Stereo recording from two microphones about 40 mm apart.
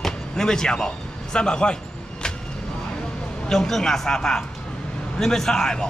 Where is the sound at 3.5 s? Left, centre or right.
Centre.